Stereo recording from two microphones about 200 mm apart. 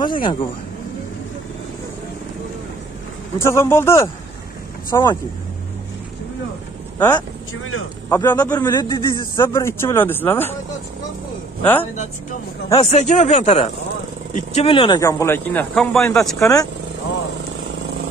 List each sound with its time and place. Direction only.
0.0 s speech: 25° left (ahead or behind)
3.3 s a man's voice: 15° left (ahead or behind)
7.0 s a man's voice: 20° left (ahead or behind)
11.6 s a man's voice: 10° left (ahead or behind)
12.7 s a man's voice: 35° left (ahead or behind); by 16.3 s centre (ahead or behind)
16.3 s a man's voice: 15° left (ahead or behind)